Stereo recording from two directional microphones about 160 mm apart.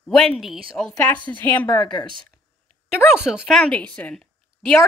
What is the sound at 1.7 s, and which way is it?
Speech, 25° left (ahead or behind).